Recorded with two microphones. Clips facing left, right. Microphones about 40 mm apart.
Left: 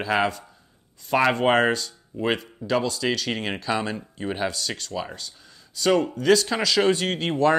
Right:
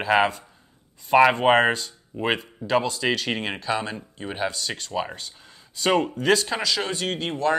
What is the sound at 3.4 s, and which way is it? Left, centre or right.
Speech, centre.